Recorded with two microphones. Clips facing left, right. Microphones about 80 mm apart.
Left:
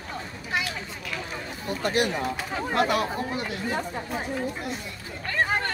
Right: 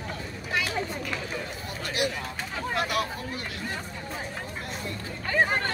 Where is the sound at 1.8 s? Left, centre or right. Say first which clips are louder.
Left 5 dB; left.